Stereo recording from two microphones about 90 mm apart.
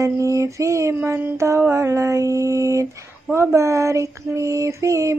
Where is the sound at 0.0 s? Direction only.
35° right (ahead or behind).